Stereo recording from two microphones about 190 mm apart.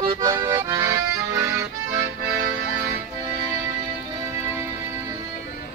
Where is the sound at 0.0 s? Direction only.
25° right (ahead or behind).